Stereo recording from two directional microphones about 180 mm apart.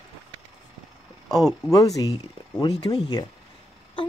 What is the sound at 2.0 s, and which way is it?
Speech, 20° left (ahead or behind).